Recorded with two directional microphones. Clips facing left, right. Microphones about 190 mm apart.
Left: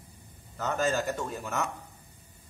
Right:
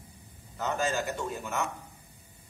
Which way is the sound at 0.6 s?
40° left (ahead or behind).